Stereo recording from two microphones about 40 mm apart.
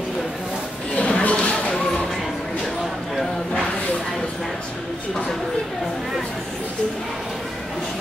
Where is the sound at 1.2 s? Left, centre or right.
Left.